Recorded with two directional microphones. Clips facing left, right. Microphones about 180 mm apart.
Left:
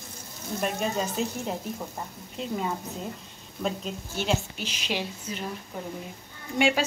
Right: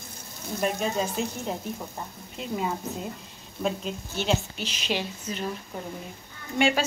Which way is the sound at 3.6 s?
5° left (ahead or behind).